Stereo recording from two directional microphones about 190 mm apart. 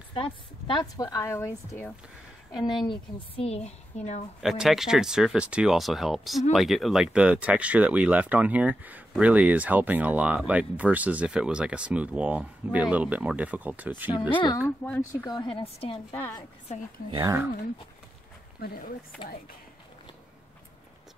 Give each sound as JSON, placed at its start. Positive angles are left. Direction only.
{"t": 0.1, "sound": "a woman's voice", "side_deg": 25}
{"t": 2.8, "sound": "a woman's voice", "side_deg": 30}
{"t": 4.4, "sound": "speech", "side_deg": 0}
{"t": 14.3, "sound": "a woman's voice", "side_deg": 25}
{"t": 16.1, "sound": "a woman's voice", "side_deg": 10}
{"t": 17.1, "sound": "speech", "side_deg": -20}